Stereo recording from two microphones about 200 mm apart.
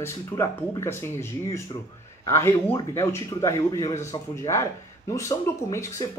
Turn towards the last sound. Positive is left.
turn(degrees=15)  # may be behind; listen again after turning